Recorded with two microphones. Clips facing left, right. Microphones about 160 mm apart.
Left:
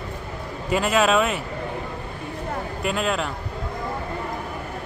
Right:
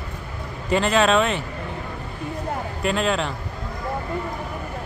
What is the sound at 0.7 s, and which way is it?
Speech, 5° left (ahead or behind).